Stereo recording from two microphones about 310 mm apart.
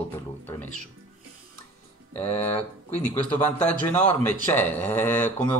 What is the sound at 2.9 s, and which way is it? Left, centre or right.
A man's voice, centre.